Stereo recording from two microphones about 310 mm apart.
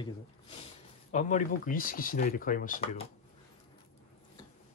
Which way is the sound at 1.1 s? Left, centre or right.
Left.